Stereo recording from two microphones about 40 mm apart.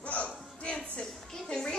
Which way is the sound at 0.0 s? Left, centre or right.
Left.